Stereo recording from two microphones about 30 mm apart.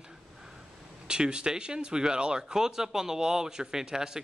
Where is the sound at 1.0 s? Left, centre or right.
Right.